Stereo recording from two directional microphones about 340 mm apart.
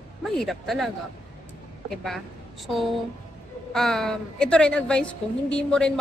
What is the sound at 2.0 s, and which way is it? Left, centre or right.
Speech, centre.